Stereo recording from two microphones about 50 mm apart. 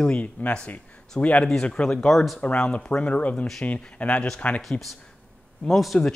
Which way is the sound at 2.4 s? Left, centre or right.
Left.